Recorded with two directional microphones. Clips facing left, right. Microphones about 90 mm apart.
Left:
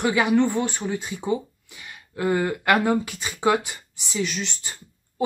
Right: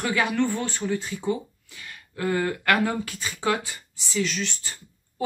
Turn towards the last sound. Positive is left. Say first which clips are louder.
# left 4 dB
turn(degrees=20)  # may be behind; listen again after turning